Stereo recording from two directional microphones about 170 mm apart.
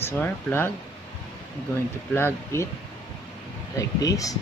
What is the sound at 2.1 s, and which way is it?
Speech, 15° left (ahead or behind).